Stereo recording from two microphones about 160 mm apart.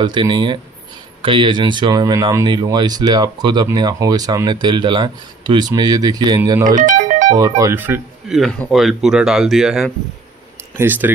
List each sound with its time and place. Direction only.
0.0 s speech: 30° right (ahead or behind)
6.6 s music: 55° right (ahead or behind)
7.3 s speech: 20° right (ahead or behind)
8.3 s speech: centre (ahead or behind)
10.8 s speech: 10° right (ahead or behind)